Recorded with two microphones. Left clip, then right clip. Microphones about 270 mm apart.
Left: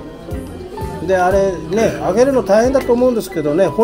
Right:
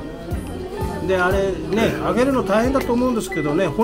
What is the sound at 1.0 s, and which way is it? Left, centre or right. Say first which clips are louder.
Speech: left 6 dB; centre.